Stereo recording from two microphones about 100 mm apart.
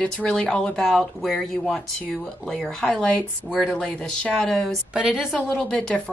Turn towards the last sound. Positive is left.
turn(degrees=5)  # may be behind; listen again after turning